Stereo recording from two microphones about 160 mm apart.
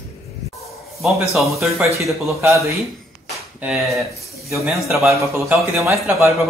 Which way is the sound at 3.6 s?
Centre (ahead or behind).